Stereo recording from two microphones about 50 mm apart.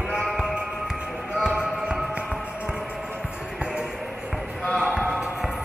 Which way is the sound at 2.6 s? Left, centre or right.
Centre.